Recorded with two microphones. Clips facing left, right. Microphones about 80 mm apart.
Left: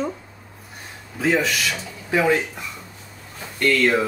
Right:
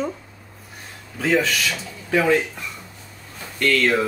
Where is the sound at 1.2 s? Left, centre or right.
Centre.